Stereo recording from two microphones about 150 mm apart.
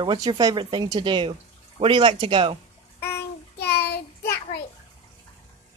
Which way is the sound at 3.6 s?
90° left.